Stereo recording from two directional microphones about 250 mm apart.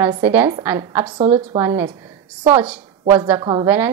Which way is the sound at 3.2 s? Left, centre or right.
Centre.